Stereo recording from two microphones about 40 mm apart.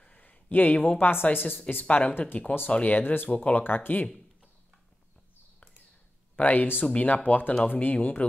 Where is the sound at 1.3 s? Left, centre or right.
Left.